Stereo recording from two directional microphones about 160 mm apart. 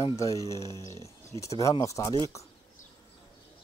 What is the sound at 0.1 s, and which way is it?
Speech, 20° left (ahead or behind).